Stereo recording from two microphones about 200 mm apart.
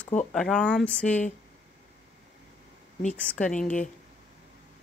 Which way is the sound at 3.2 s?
5° left (ahead or behind).